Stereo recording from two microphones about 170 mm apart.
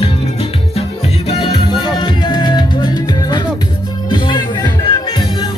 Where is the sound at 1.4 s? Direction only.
30° left (ahead or behind).